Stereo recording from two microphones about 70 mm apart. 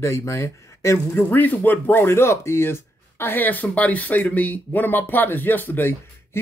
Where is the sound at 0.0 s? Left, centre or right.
Left.